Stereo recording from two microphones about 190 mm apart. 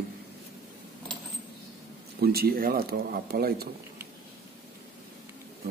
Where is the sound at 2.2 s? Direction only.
55° right (ahead or behind).